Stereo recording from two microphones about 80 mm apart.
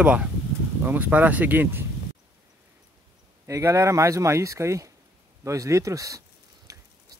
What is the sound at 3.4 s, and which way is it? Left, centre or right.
Speech, right.